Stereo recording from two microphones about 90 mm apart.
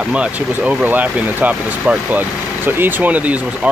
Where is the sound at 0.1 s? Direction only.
15° right (ahead or behind).